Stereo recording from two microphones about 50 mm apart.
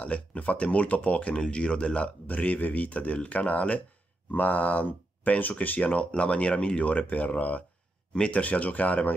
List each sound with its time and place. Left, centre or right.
0.0 s speech: left
2.2 s speech: left
5.8 s speech: left